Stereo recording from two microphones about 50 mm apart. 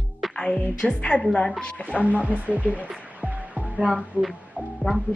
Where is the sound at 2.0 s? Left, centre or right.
Right.